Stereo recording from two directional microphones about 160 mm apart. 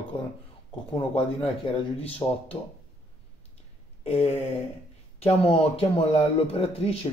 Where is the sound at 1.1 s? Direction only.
40° left (ahead or behind).